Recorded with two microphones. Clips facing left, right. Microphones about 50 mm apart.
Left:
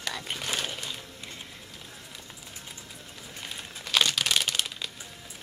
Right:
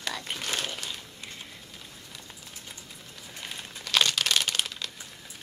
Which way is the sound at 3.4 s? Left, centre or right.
Centre.